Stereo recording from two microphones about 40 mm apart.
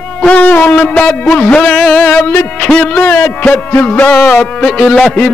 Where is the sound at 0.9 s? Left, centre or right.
Left.